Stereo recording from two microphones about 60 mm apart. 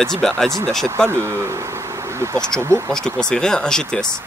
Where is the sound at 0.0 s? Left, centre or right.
Centre.